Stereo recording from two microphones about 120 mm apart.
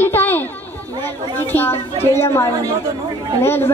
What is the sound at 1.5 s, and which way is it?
A woman's voice, 15° left (ahead or behind).